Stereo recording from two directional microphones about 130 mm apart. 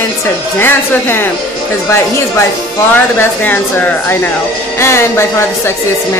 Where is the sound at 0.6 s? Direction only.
15° left (ahead or behind).